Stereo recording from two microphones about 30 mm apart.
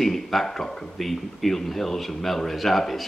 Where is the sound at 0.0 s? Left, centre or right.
Centre.